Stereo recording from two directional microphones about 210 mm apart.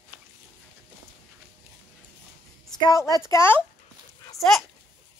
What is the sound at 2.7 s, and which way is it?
Speech, 20° left (ahead or behind).